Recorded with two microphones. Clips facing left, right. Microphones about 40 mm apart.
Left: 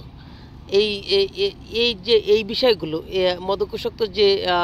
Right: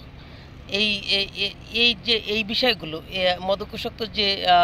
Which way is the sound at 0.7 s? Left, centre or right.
Right.